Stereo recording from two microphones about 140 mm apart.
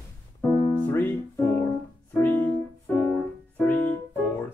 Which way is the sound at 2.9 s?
10° left (ahead or behind).